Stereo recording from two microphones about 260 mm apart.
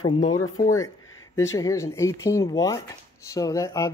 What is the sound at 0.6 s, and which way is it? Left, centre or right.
Speech, centre.